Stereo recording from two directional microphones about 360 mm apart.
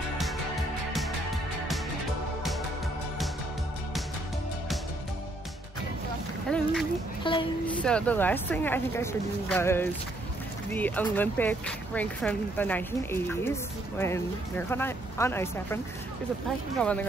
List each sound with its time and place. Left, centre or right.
6.5 s a sound: centre
7.2 s speech: centre
7.7 s speech: centre